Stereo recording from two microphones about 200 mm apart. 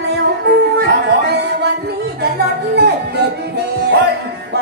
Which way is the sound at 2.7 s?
55° right (ahead or behind).